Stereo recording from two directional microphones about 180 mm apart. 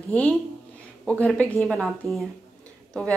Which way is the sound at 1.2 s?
5° left (ahead or behind).